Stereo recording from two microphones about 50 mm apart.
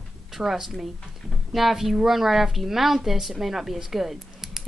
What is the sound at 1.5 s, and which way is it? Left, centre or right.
Speech, centre.